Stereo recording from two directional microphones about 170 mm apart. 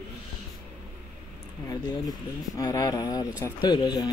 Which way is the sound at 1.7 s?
20° left (ahead or behind).